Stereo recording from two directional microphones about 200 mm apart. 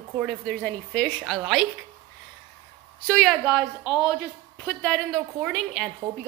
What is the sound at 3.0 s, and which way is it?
Speech, centre (ahead or behind).